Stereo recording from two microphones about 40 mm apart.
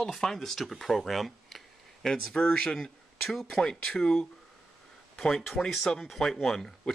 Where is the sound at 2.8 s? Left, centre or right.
Centre.